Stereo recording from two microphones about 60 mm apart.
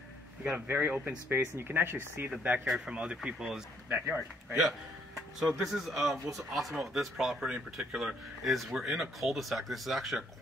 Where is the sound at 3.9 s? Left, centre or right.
Right.